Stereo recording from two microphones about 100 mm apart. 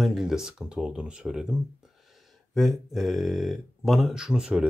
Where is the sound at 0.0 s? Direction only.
5° right (ahead or behind).